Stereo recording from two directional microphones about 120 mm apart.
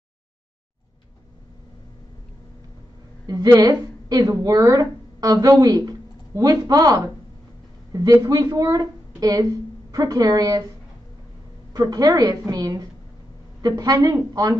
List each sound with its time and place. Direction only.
3.3 s a woman's voice: 30° right (ahead or behind)
8.2 s a woman's voice: 30° right (ahead or behind)
11.7 s a woman's voice: 30° right (ahead or behind)